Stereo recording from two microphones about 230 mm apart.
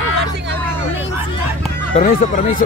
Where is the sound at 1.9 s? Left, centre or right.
Left.